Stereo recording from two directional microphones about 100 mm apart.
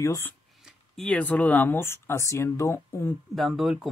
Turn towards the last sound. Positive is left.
turn(degrees=-5)  # may be behind; listen again after turning